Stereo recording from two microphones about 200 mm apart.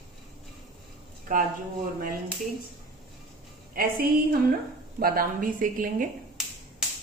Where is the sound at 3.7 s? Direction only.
45° right (ahead or behind).